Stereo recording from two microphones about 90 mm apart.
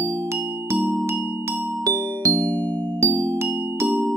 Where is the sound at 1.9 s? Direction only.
35° right (ahead or behind).